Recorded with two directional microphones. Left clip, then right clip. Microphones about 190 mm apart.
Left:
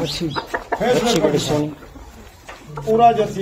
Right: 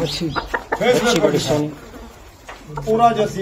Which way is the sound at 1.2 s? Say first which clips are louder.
Right 1 dB; 10° left (ahead or behind).